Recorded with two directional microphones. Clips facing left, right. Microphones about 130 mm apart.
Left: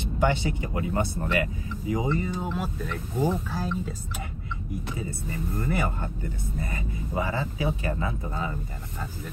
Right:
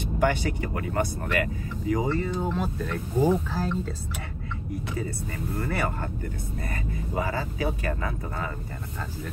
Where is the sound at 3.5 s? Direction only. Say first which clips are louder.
Right 2 dB; 10° left (ahead or behind).